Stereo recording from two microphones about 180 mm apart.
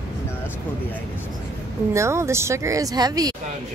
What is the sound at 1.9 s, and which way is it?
Speech, 15° right (ahead or behind).